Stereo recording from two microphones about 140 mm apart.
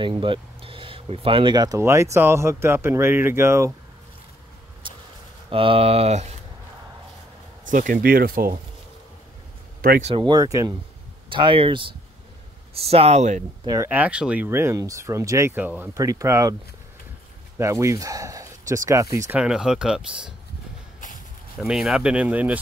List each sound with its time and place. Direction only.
0.0 s speech: 35° right (ahead or behind); by 3.7 s 20° right (ahead or behind)
4.8 s a sound: 35° right (ahead or behind)
5.5 s speech: 40° right (ahead or behind)
7.6 s speech: 70° right (ahead or behind); by 8.5 s 90° right
9.8 s a sound: 90° right
10.0 s speech: 35° right (ahead or behind)
11.2 s speech: 35° right (ahead or behind); by 13.4 s 55° right (ahead or behind)
13.8 s speech: 10° right (ahead or behind)
17.6 s speech: 20° right (ahead or behind)
19.3 s speech: 5° right (ahead or behind)
21.5 s speech: centre (ahead or behind)